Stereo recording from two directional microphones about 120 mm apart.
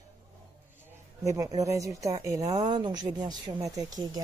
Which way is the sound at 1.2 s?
25° right (ahead or behind).